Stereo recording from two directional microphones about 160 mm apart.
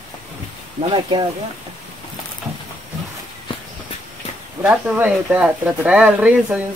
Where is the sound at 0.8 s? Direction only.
30° right (ahead or behind).